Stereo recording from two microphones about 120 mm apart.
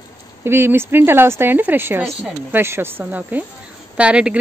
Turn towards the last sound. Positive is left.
turn(degrees=-10)  # may be behind; listen again after turning